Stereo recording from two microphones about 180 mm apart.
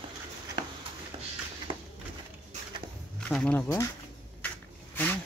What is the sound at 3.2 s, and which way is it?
Speech, 5° left (ahead or behind).